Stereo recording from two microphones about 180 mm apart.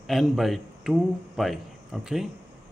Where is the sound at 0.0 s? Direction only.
Centre (ahead or behind).